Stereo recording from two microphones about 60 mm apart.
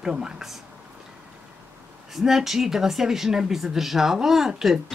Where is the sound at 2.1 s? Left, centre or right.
Centre.